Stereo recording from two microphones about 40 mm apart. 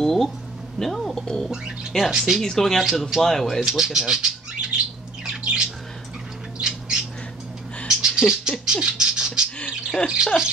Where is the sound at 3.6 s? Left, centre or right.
Centre.